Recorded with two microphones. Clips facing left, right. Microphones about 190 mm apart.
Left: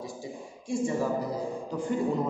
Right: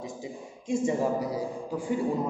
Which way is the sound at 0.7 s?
15° right (ahead or behind).